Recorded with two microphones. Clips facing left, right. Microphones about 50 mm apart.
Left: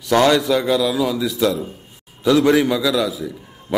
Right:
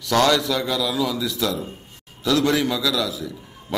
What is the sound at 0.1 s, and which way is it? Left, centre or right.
A man's voice, centre.